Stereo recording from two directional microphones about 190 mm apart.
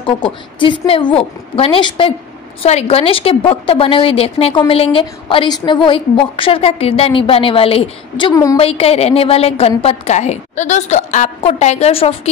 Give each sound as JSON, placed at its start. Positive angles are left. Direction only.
{"t": 0.0, "sound": "a woman's voice", "side_deg": 25}
{"t": 8.5, "sound": "a woman's voice", "side_deg": 30}